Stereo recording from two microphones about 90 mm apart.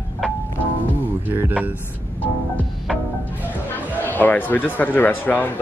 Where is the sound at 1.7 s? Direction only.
20° left (ahead or behind).